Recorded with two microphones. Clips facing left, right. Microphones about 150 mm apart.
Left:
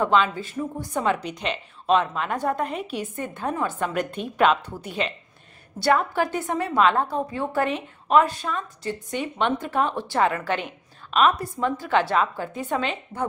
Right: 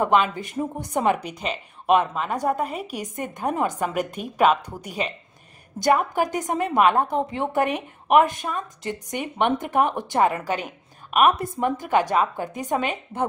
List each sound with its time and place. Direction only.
0.0 s a woman's voice: 15° right (ahead or behind)